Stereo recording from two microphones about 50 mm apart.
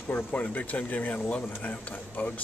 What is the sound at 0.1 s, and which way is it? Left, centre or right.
Speech, left.